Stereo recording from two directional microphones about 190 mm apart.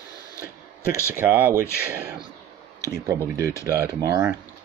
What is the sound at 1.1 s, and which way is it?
Speech, 10° right (ahead or behind).